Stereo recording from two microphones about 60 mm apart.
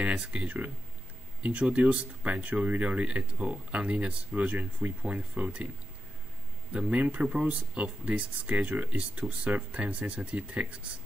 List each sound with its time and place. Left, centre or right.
0.0 s speech: centre
6.7 s speech: centre